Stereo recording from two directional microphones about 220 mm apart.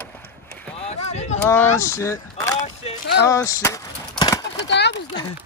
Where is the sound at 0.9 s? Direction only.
30° left (ahead or behind).